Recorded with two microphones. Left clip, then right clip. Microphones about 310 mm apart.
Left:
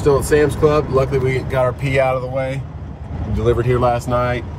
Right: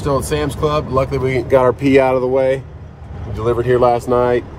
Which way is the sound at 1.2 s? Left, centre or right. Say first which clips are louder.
Right 5 dB; right.